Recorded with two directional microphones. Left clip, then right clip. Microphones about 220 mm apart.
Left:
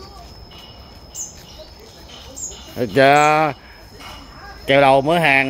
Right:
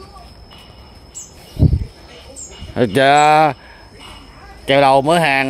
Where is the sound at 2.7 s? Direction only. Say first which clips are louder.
Right 1 dB; 35° right (ahead or behind).